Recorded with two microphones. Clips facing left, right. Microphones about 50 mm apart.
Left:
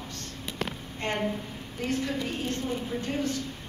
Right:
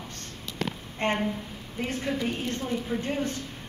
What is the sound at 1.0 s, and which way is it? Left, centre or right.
Speech, right.